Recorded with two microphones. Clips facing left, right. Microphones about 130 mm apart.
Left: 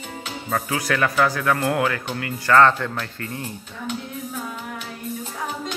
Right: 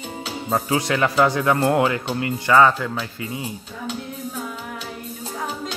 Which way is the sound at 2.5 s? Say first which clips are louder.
Even; 5° right (ahead or behind).